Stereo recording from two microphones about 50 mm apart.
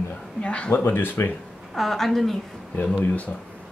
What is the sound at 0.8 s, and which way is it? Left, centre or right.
Speech, left.